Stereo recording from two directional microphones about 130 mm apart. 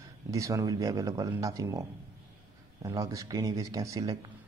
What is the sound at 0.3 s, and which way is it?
Speech, 25° right (ahead or behind).